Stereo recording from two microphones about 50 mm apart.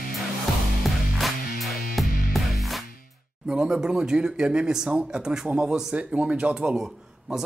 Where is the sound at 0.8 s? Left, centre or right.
Centre.